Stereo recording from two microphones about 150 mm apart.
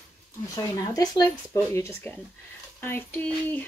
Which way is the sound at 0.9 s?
25° left (ahead or behind).